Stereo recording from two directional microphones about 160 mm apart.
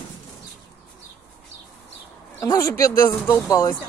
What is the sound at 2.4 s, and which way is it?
Speech, 20° left (ahead or behind).